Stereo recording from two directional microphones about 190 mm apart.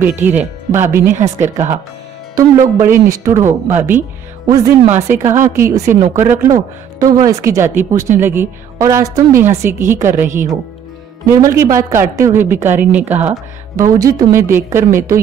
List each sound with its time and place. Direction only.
0.0 s a woman's voice: 10° right (ahead or behind)
2.6 s a man's voice: 45° right (ahead or behind)
3.1 s a woman's voice: 15° right (ahead or behind)